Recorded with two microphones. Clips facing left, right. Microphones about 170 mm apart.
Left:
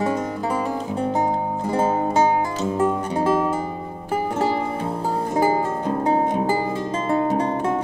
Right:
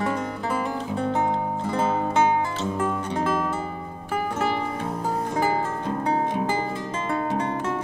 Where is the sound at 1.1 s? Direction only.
35° left (ahead or behind).